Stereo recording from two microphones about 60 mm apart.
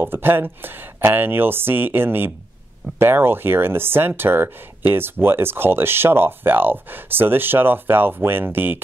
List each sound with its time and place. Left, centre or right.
0.0 s speech: right